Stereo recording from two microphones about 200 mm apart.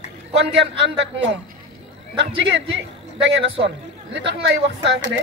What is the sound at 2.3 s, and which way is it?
A man's voice, 65° right (ahead or behind).